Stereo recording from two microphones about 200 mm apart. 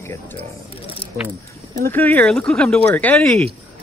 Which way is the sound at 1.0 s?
55° left (ahead or behind).